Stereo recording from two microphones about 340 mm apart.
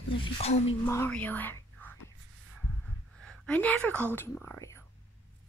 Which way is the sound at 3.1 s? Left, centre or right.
Centre.